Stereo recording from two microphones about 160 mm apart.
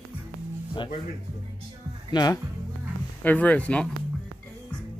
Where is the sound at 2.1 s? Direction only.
25° left (ahead or behind).